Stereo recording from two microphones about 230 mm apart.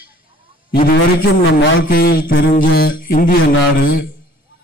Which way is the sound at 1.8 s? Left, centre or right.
Left.